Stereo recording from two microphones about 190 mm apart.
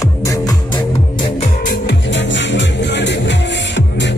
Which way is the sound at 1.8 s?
70° left (ahead or behind).